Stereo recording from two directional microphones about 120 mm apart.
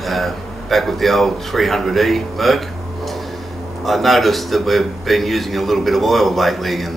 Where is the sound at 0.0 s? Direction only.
Centre (ahead or behind).